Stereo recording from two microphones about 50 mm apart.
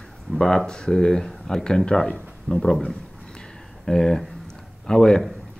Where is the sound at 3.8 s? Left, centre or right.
Centre.